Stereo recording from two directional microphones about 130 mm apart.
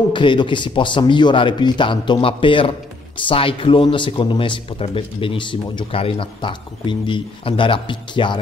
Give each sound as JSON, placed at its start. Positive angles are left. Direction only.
{"t": 0.1, "sound": "speech", "side_deg": 40}